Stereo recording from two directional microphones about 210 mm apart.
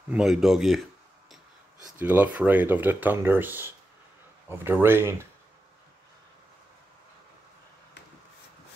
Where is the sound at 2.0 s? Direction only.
10° right (ahead or behind).